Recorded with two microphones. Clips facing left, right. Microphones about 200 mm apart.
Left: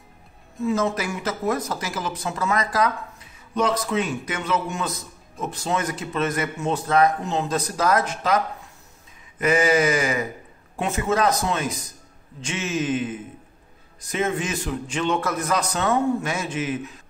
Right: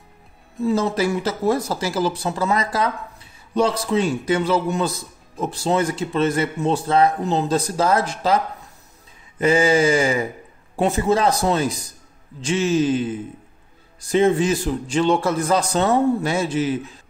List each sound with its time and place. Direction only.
0.6 s speech: 35° right (ahead or behind)
9.4 s speech: 30° right (ahead or behind)